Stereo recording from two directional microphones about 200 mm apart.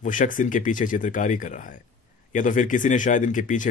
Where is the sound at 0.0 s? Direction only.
40° left (ahead or behind).